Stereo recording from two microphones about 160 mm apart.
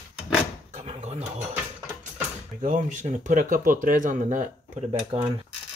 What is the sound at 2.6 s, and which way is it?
Speech, 50° right (ahead or behind).